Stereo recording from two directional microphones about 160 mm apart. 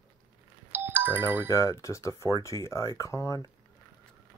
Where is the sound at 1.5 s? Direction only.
20° left (ahead or behind).